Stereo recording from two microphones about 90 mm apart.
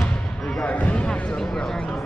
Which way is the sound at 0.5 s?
15° left (ahead or behind).